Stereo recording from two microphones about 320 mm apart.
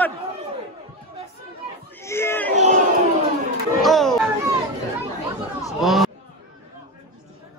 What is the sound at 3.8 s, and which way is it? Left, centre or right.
Chatter, centre.